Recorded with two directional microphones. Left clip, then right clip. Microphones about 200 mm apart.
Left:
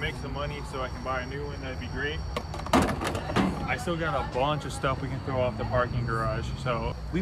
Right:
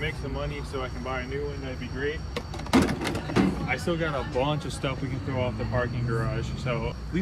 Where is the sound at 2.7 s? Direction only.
25° left (ahead or behind).